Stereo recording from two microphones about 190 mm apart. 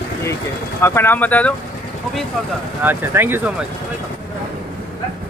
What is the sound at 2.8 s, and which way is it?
Speech, 10° right (ahead or behind).